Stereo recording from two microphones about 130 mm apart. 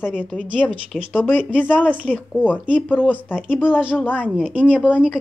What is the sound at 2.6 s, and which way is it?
Speech, 10° right (ahead or behind).